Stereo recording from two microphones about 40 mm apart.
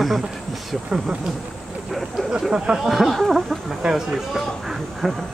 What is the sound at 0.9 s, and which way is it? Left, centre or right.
Speech, right.